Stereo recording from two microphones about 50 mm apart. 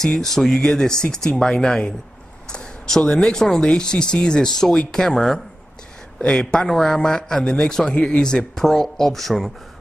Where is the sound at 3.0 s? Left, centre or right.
Centre.